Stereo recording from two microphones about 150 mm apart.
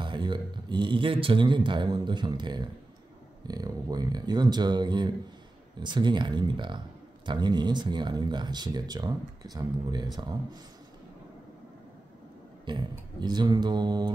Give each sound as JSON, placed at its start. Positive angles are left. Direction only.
{"t": 0.0, "sound": "a man's voice", "side_deg": -30}
{"t": 12.6, "sound": "speech", "side_deg": -30}